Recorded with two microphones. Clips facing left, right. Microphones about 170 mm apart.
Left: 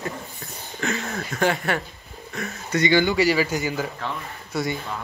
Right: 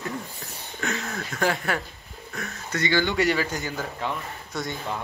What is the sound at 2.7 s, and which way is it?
Speech, 15° left (ahead or behind).